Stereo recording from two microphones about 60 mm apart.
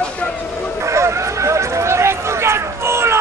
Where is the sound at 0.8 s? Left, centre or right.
Right.